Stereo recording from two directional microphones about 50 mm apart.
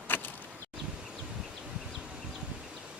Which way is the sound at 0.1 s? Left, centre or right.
Left.